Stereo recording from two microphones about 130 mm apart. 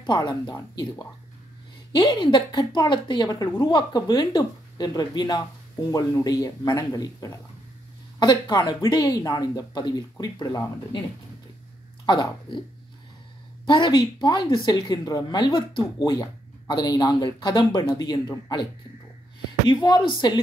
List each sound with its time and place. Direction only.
0.0 s speech: 30° left (ahead or behind)
12.1 s speech: 35° left (ahead or behind)
13.7 s speech: 35° left (ahead or behind)
19.7 s speech: 35° left (ahead or behind)